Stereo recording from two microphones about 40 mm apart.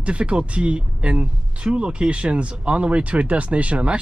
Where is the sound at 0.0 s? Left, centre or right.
Right.